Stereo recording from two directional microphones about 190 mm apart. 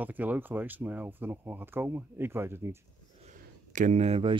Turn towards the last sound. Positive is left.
turn(degrees=-30)  # may be behind; listen again after turning